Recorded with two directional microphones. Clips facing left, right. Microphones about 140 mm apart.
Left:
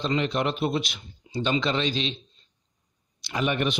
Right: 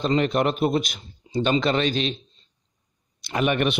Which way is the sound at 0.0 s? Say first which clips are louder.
Right 4 dB; 50° right (ahead or behind).